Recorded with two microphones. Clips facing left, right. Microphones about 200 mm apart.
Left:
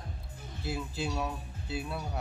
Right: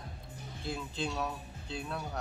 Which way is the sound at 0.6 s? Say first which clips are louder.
Left 2 dB; 5° left (ahead or behind).